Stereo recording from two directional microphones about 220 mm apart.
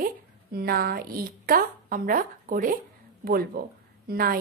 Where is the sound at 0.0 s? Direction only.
45° right (ahead or behind).